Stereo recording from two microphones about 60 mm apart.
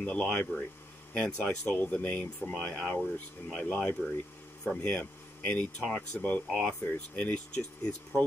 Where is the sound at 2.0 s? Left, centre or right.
Left.